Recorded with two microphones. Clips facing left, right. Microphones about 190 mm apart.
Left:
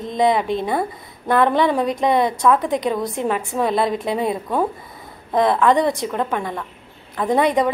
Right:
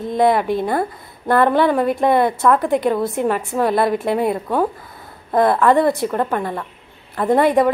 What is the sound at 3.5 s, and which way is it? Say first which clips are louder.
Speech: right 2 dB; centre (ahead or behind).